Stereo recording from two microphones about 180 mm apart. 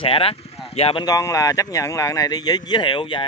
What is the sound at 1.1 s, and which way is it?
Speech, 20° left (ahead or behind).